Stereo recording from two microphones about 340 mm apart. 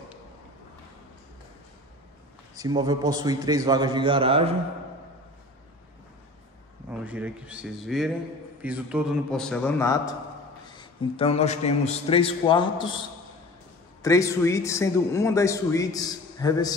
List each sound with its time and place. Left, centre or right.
2.5 s a man's voice: centre
6.9 s a man's voice: centre
14.0 s a man's voice: centre